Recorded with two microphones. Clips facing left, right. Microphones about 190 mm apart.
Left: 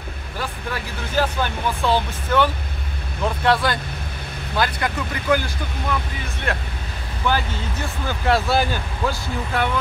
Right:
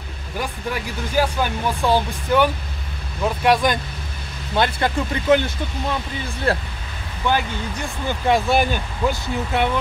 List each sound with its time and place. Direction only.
1.1 s speech: 10° right (ahead or behind)
4.6 s speech: 25° right (ahead or behind)
7.2 s speech: 15° right (ahead or behind)